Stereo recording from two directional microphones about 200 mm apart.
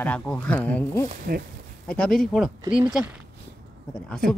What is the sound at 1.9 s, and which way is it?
Speech, 5° left (ahead or behind).